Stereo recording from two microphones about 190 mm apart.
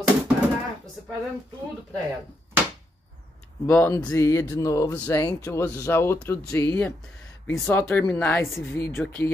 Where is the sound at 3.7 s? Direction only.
15° left (ahead or behind).